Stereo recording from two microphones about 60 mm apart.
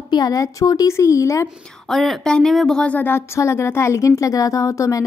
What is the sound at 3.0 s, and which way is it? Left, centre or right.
A woman's voice, left.